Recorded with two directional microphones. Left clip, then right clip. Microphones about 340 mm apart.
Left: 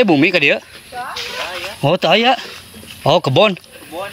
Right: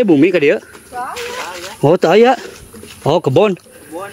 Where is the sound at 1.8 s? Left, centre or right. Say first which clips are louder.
Right 4 dB; centre.